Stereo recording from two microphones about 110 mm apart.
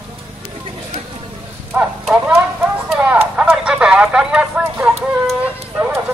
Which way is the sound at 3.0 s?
15° right (ahead or behind).